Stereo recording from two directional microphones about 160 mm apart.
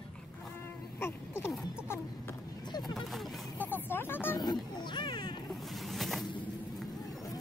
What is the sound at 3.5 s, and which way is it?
Vehicle, 10° left (ahead or behind).